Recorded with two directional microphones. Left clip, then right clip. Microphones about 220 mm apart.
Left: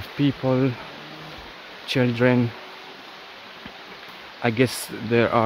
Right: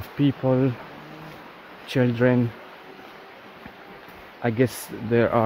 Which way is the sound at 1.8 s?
10° left (ahead or behind).